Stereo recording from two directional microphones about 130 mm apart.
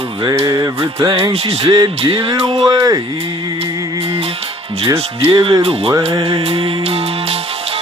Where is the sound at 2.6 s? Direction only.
30° right (ahead or behind).